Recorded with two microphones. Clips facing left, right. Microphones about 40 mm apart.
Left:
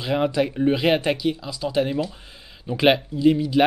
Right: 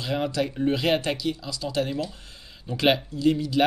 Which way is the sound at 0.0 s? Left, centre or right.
Centre.